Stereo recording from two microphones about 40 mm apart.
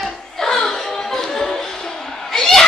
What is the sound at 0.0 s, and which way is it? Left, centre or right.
Music, centre.